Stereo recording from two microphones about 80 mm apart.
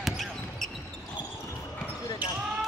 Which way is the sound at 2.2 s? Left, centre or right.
Centre.